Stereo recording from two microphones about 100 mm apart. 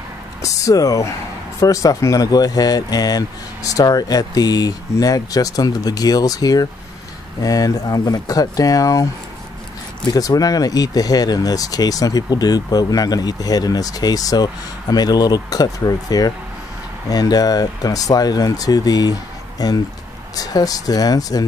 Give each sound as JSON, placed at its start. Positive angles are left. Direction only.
{"t": 0.4, "sound": "speech", "side_deg": 35}
{"t": 10.0, "sound": "speech", "side_deg": 40}